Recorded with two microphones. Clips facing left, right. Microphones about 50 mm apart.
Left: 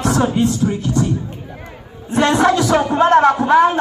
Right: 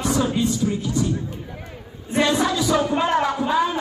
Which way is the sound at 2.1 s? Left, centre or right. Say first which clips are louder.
Left 6 dB; left.